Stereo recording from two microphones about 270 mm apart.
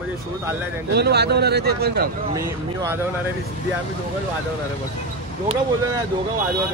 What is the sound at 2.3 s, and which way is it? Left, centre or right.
Speech, centre.